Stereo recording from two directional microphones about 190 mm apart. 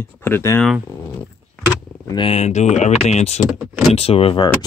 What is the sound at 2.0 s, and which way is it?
Speech, 25° left (ahead or behind).